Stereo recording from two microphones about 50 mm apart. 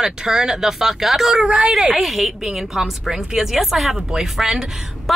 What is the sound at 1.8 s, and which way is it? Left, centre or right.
A woman's voice, centre.